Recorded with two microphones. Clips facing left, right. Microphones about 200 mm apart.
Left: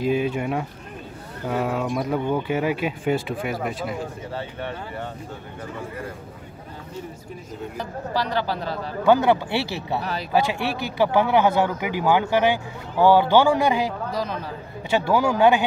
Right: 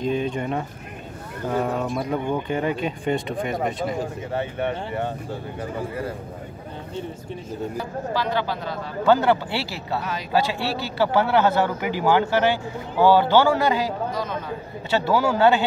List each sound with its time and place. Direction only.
0.0 s speech: 10° left (ahead or behind)
4.6 s speech: 25° right (ahead or behind)
8.1 s speech: 40° left (ahead or behind)
9.0 s speech: 15° left (ahead or behind)
14.1 s speech: 35° left (ahead or behind)
14.9 s speech: 15° left (ahead or behind)